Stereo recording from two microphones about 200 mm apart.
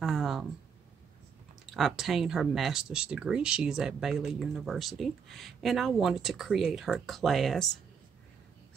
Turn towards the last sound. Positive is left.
turn(degrees=0)  # may be behind; listen again after turning